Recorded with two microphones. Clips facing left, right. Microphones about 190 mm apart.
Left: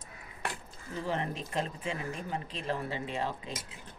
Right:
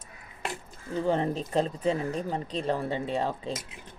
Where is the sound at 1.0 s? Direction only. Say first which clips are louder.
Right 8 dB; 35° right (ahead or behind).